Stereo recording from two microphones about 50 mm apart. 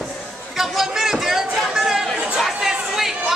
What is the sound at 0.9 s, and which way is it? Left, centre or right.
Chatter, centre.